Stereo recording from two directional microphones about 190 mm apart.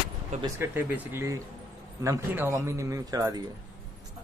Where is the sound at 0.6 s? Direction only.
10° right (ahead or behind).